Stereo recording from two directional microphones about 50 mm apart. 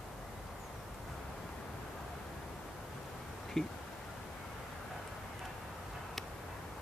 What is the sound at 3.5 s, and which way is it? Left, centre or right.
Speech, centre.